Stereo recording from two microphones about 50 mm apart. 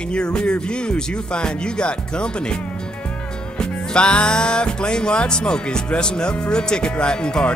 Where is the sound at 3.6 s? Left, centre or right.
Centre.